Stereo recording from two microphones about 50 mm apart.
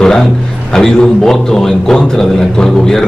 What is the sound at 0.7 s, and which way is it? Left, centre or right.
A man's voice, centre.